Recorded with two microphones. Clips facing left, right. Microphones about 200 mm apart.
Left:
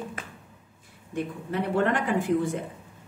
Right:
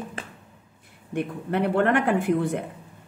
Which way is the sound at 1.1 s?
60° right (ahead or behind).